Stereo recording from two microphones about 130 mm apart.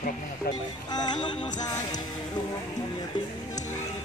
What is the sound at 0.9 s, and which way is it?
Music, 35° left (ahead or behind).